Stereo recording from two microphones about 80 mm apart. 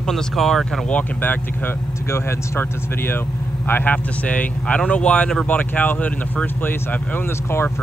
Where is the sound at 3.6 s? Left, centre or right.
Left.